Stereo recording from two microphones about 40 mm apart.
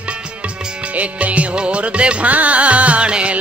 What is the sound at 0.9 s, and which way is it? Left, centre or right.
Music, right.